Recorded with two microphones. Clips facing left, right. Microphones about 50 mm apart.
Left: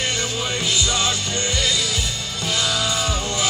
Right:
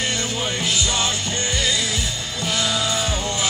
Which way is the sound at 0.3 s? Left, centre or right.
Right.